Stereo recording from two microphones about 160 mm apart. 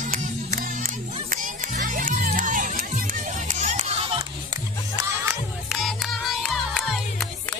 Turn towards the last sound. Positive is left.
turn(degrees=0)  # may be behind; listen again after turning